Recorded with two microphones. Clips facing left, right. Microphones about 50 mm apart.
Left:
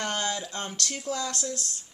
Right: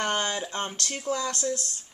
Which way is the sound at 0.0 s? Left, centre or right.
Centre.